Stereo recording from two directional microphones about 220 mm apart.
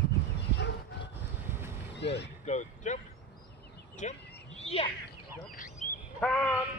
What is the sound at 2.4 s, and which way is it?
Speech, 35° left (ahead or behind).